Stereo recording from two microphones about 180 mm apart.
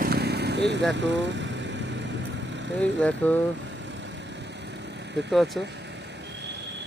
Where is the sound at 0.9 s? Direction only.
80° right.